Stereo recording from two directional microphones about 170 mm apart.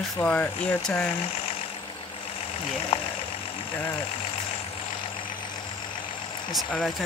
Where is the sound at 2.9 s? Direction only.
35° left (ahead or behind).